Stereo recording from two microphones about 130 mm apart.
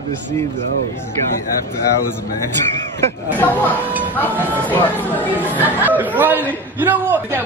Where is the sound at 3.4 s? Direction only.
15° left (ahead or behind).